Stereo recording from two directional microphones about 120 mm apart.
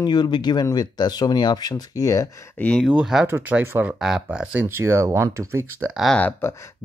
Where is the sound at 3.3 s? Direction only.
20° right (ahead or behind).